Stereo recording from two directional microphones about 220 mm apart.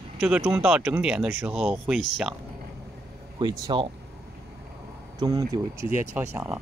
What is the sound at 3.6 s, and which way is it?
Speech, 20° right (ahead or behind).